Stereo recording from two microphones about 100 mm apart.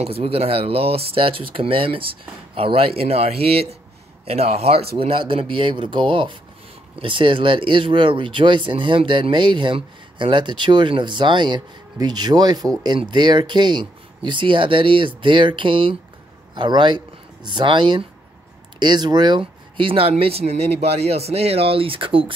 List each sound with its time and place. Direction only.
0.0 s speech: 80° right